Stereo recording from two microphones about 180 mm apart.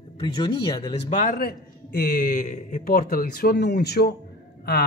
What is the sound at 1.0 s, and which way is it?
A man's voice, 45° left (ahead or behind).